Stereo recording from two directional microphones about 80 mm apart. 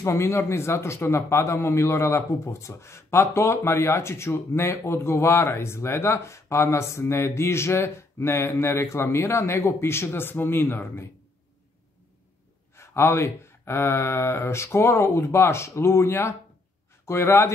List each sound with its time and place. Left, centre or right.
0.0 s a man's voice: left
12.7 s a man's voice: left